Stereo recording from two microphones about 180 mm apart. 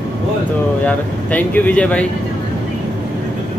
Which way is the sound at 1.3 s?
10° left (ahead or behind).